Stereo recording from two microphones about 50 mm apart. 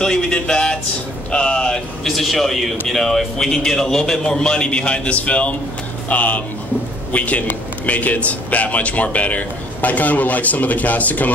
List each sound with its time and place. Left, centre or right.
0.0 s a man's voice: centre
2.0 s a man's voice: centre; by 11.3 s left